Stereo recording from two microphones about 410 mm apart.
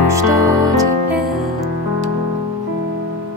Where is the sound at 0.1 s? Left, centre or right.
Centre.